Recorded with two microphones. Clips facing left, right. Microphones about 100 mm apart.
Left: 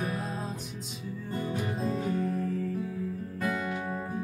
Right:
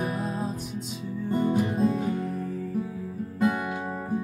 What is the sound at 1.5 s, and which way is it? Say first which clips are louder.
Music: right 7 dB; 20° right (ahead or behind).